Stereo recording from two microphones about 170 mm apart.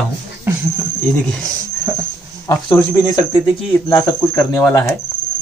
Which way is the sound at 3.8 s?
20° left (ahead or behind).